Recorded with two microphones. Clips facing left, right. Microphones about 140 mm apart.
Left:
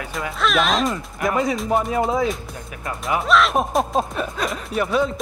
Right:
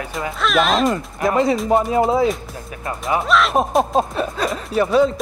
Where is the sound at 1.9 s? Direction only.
30° right (ahead or behind).